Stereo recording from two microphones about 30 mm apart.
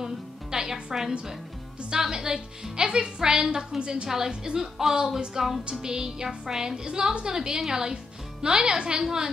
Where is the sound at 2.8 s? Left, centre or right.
Right.